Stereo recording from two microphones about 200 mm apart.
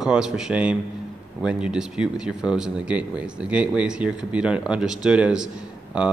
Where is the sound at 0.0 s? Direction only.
5° right (ahead or behind).